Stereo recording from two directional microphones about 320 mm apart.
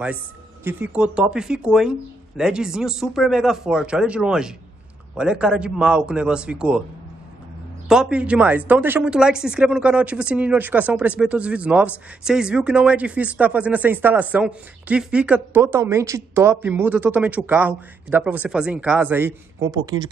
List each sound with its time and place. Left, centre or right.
0.7 s speech: centre
7.9 s speech: centre